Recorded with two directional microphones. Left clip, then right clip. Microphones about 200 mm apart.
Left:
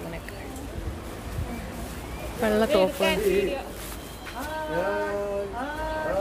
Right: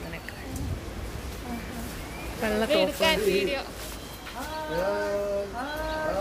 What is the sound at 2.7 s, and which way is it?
Speech, 20° right (ahead or behind).